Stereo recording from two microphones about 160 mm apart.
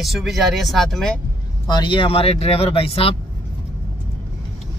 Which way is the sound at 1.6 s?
30° left (ahead or behind).